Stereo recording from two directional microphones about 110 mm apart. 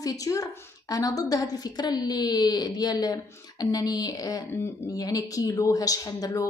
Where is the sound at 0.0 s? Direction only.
30° left (ahead or behind).